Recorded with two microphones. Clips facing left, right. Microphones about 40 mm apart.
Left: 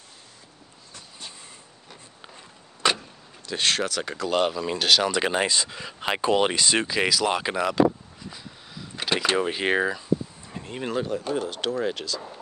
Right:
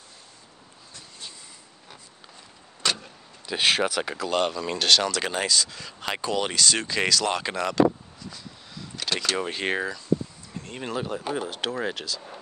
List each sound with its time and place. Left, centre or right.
2.8 s vehicle: centre
3.4 s speech: centre
4.3 s speech: centre
5.1 s speech: centre
6.9 s a sound: centre
9.4 s speech: centre
10.6 s speech: centre
11.1 s speech: centre